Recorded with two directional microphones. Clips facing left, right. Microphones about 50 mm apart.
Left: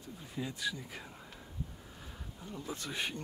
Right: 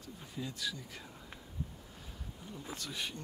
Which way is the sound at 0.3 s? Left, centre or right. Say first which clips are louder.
Left 3 dB; centre.